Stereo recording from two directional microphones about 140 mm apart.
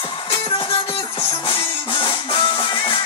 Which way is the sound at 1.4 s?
40° left (ahead or behind).